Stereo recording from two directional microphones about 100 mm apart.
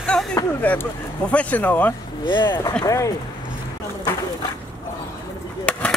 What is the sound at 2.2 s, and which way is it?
Speech, 55° left (ahead or behind).